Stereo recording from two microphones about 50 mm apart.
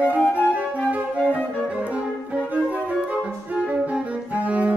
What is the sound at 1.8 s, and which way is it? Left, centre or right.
Music, right.